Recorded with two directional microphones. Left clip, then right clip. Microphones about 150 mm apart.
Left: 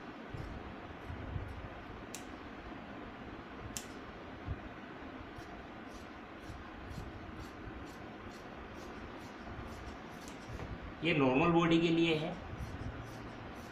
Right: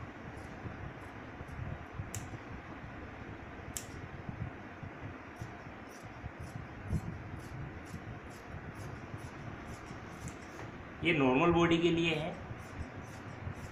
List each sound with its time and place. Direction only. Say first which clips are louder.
11.0 s a man's voice: right 2 dB; 40° right (ahead or behind)